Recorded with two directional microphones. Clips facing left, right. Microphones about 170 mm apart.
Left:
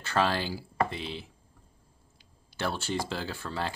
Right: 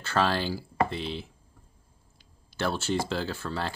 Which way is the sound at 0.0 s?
15° left (ahead or behind).